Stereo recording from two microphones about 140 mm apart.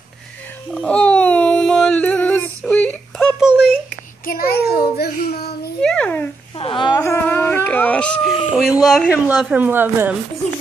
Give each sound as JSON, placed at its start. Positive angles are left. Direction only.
{"t": 0.7, "sound": "a sound", "side_deg": 10}
{"t": 4.3, "sound": "a child's voice", "side_deg": 90}
{"t": 5.8, "sound": "a child's voice", "side_deg": 10}
{"t": 6.6, "sound": "speech", "side_deg": 35}
{"t": 7.0, "sound": "a sound", "side_deg": 15}
{"t": 8.5, "sound": "speech", "side_deg": -5}